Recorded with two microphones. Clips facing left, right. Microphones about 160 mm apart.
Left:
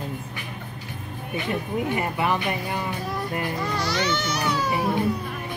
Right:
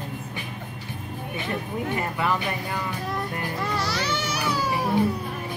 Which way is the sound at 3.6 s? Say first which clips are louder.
Even; 5° right (ahead or behind).